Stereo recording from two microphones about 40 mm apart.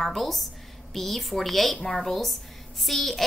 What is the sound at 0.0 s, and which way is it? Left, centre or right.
A child's voice, centre.